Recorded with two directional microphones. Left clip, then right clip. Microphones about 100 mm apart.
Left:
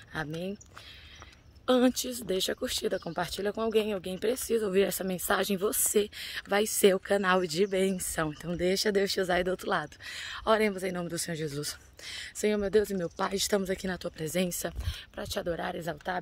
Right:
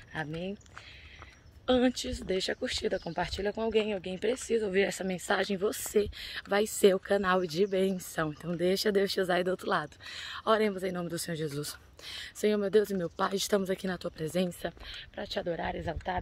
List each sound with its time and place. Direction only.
0.1 s speech: 65° left (ahead or behind)
1.7 s speech: 60° left (ahead or behind)
5.9 s speech: 20° left (ahead or behind)
14.6 s speech: 45° left (ahead or behind)